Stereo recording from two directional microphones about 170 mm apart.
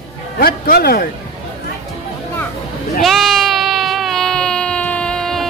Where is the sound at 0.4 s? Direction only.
65° left (ahead or behind).